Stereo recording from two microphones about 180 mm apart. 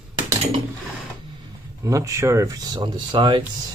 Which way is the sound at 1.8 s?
15° right (ahead or behind).